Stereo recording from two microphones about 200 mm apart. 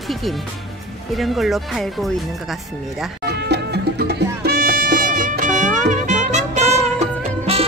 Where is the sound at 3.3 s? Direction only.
55° right (ahead or behind).